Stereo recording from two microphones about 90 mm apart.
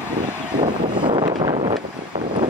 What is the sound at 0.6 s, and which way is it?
Vehicle, 70° right (ahead or behind).